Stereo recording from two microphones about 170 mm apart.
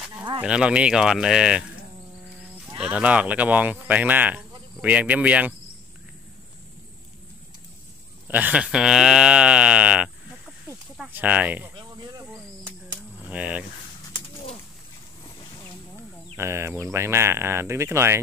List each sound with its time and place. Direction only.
0.4 s speech: 5° right (ahead or behind)
2.8 s speech: 5° right (ahead or behind)
8.3 s speech: 10° right (ahead or behind)
11.7 s cricket: 25° right (ahead or behind)
13.2 s speech: 10° right (ahead or behind)
16.3 s speech: 15° right (ahead or behind)